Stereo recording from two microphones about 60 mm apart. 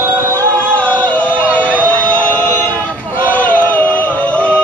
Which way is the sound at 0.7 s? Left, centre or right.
Left.